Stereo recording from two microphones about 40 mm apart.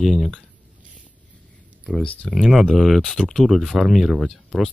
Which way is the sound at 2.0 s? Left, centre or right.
Left.